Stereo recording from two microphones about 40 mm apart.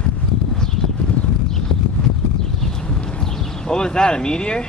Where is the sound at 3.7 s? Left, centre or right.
Centre.